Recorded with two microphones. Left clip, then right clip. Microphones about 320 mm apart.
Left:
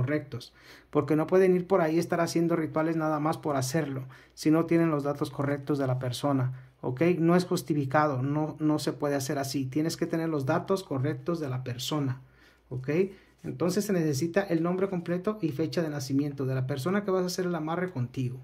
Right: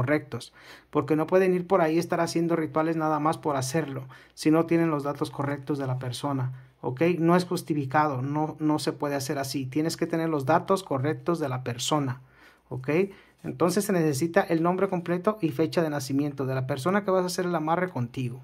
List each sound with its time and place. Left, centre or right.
0.0 s speech: centre